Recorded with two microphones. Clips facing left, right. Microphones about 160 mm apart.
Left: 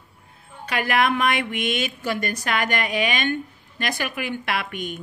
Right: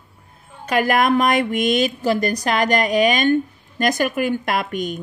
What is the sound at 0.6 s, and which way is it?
Speech, 45° right (ahead or behind).